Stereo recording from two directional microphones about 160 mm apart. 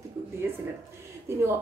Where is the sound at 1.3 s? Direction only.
15° right (ahead or behind).